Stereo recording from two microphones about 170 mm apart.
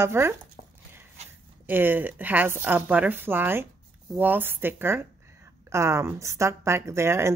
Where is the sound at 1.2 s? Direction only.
40° right (ahead or behind).